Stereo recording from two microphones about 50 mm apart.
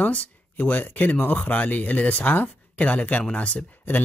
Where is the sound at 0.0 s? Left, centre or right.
Left.